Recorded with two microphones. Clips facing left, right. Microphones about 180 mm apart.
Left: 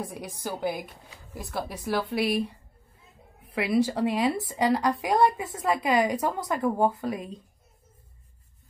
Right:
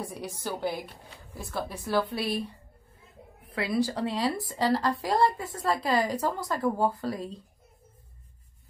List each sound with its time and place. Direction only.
0.0 s a woman's voice: 15° left (ahead or behind)
3.4 s a woman's voice: 20° left (ahead or behind)